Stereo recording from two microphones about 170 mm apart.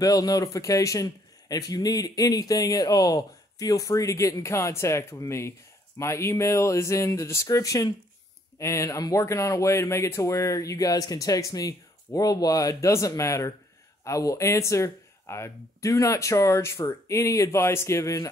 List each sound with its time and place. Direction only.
0.0 s speech: 20° left (ahead or behind)